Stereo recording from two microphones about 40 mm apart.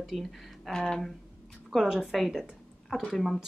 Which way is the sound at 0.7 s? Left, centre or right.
Centre.